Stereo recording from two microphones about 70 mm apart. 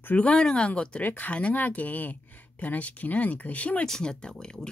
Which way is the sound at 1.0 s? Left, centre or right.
Left.